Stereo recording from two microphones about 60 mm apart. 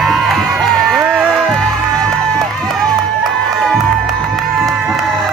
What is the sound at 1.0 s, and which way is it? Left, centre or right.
Music, right.